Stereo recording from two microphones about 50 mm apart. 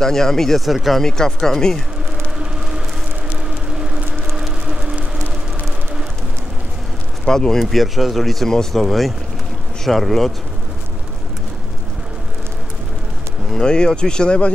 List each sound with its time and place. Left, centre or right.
0.0 s speech: centre
1.0 s speech: centre
3.4 s a sound: centre
7.2 s speech: centre
7.5 s speech: centre
13.5 s speech: centre